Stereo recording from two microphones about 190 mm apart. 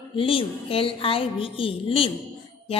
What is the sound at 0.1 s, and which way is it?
A woman's voice, 30° left (ahead or behind).